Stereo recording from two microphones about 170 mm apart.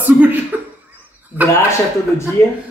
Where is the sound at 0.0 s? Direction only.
10° right (ahead or behind).